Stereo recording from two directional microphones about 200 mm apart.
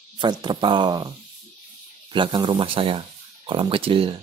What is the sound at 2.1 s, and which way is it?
A man's voice, 25° right (ahead or behind).